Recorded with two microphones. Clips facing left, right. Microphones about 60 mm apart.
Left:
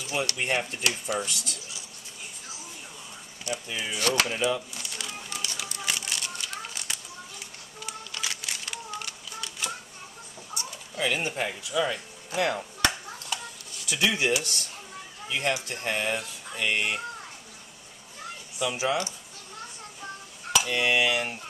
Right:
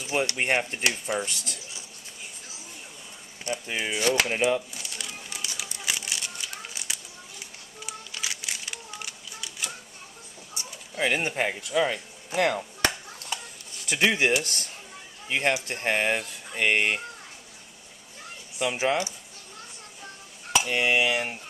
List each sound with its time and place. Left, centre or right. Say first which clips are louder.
0.0 s speech: right 3 dB; right
3.4 s speech: right 3 dB; right
4.0 s speech: right 1 dB; centre
4.7 s a sound: left 1 dB; centre
10.5 s speech: left 2 dB; right
13.8 s speech: right 3 dB; right
18.6 s speech: right 2 dB; right
20.5 s speech: right 1 dB; right